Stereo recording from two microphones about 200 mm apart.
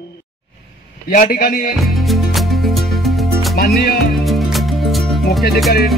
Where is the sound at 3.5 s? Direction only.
50° left (ahead or behind).